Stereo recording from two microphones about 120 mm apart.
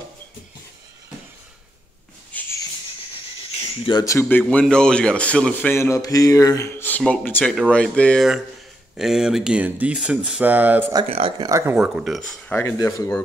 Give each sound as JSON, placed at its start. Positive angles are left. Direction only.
{"t": 2.3, "sound": "a sound", "side_deg": 15}
{"t": 4.0, "sound": "speech", "side_deg": 25}
{"t": 4.3, "sound": "speech", "side_deg": 15}
{"t": 6.7, "sound": "a sound", "side_deg": 15}
{"t": 7.0, "sound": "speech", "side_deg": 10}
{"t": 8.9, "sound": "speech", "side_deg": -5}
{"t": 11.1, "sound": "speech", "side_deg": -55}
{"t": 11.3, "sound": "speech", "side_deg": -35}
{"t": 11.6, "sound": "speech", "side_deg": -10}
{"t": 12.4, "sound": "speech", "side_deg": 20}